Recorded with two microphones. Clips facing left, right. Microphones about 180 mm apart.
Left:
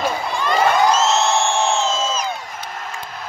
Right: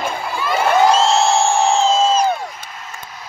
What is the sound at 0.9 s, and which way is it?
Music, 30° right (ahead or behind).